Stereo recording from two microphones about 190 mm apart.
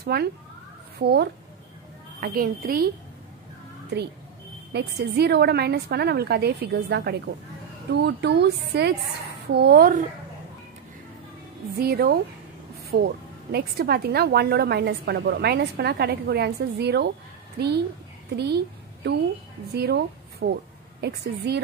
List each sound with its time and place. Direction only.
0.0 s a woman's voice: 55° right (ahead or behind)
4.7 s speech: 60° right (ahead or behind)
11.8 s speech: 55° right (ahead or behind)